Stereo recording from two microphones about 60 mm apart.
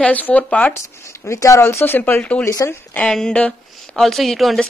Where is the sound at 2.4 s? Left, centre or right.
Left.